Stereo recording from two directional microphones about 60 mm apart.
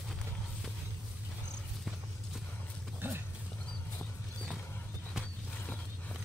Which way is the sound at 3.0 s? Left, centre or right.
Right.